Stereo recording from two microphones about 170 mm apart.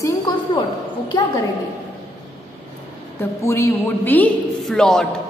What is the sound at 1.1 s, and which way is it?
Speech, 25° left (ahead or behind).